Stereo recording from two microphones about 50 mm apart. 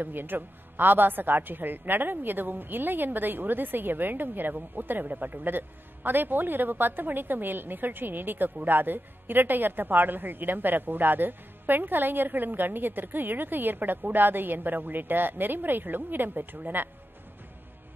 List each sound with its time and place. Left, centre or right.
0.0 s a woman's voice: right